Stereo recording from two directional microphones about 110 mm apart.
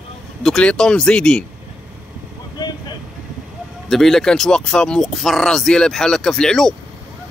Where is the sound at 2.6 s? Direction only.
35° left (ahead or behind).